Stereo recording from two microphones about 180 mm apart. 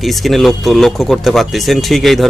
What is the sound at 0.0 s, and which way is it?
Speech, centre (ahead or behind).